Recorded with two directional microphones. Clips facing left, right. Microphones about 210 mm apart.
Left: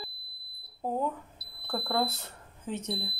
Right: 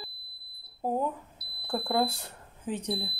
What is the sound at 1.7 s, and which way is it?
Speech, 15° right (ahead or behind).